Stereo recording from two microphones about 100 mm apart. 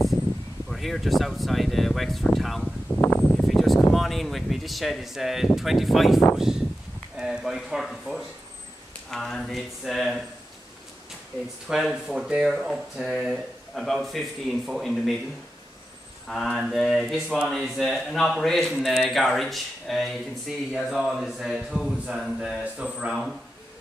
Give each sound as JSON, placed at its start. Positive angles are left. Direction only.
{"t": 0.7, "sound": "speech", "side_deg": 0}
{"t": 3.0, "sound": "a sound", "side_deg": 25}
{"t": 3.4, "sound": "a sound", "side_deg": 0}
{"t": 3.9, "sound": "speech", "side_deg": 0}
{"t": 11.6, "sound": "speech", "side_deg": -5}
{"t": 16.3, "sound": "speech", "side_deg": 0}